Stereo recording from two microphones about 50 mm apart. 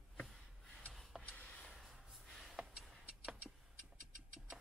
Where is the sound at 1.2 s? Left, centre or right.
Left.